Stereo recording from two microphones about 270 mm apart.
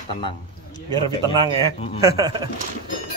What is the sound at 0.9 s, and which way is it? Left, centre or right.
A man's voice, centre.